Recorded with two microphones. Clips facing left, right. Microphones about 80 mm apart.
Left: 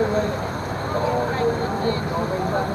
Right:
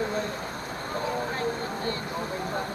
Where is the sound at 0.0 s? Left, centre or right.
Left.